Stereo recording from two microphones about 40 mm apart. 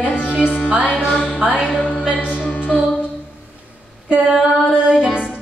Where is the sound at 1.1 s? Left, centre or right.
Left.